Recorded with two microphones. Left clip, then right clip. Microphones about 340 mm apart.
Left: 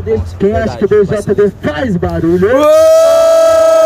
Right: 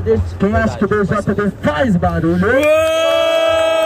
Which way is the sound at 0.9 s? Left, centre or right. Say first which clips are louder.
Left 6 dB; centre.